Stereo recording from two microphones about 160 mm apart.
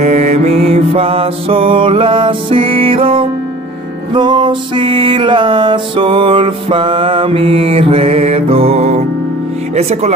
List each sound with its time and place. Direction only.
0.0 s music: 45° right (ahead or behind)
9.8 s speech: 40° right (ahead or behind)